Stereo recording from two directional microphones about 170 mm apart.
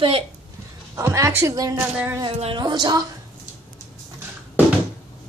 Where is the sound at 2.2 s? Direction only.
30° right (ahead or behind).